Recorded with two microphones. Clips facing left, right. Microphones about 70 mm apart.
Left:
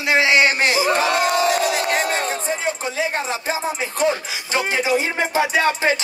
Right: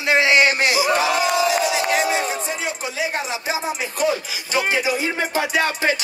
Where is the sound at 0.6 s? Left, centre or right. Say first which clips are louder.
Even; left.